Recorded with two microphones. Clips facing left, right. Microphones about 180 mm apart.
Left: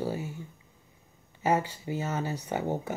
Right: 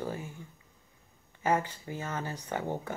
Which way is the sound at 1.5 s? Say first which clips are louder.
Left 2 dB; 10° left (ahead or behind).